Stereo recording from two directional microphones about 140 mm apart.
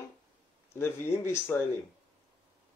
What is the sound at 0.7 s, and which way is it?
Speech, 20° left (ahead or behind).